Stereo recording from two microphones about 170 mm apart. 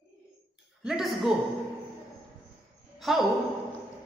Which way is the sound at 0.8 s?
Centre (ahead or behind).